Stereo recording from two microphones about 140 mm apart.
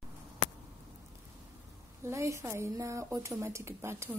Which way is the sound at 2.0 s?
20° right (ahead or behind).